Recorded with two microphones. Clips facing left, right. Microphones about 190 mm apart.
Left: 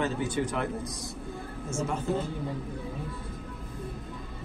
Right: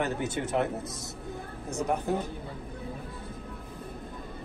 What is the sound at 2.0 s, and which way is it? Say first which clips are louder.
Speech: even; 15° right (ahead or behind).